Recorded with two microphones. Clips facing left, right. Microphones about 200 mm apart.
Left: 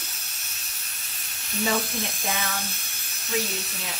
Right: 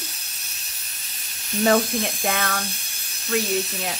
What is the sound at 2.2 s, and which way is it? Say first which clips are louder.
Speech: right 5 dB; 60° right (ahead or behind).